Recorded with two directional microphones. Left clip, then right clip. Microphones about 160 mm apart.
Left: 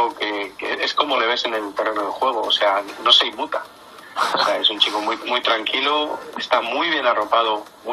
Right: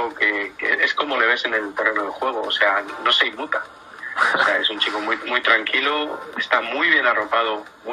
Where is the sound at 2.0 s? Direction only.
Centre (ahead or behind).